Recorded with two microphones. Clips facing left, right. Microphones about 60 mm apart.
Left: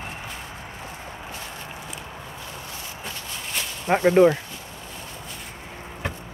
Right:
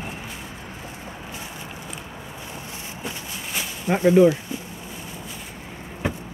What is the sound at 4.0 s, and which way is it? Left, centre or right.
Speech, left.